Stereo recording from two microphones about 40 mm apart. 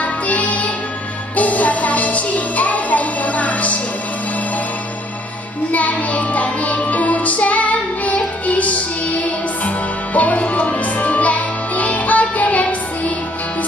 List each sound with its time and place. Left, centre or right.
0.0 s music: left
5.7 s music: left